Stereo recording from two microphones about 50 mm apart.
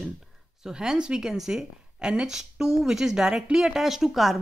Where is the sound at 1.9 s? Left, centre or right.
Centre.